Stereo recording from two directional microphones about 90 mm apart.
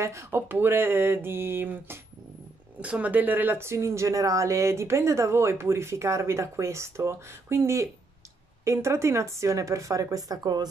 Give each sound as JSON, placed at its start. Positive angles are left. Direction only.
{"t": 0.0, "sound": "speech", "side_deg": -35}